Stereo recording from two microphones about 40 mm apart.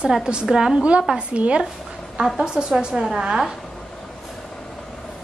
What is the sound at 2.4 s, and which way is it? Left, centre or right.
A woman's voice, centre.